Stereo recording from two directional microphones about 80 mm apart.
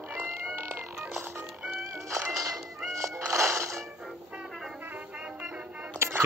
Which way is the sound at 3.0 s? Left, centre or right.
Right.